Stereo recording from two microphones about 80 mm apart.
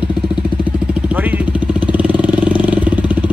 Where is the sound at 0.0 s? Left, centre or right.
Centre.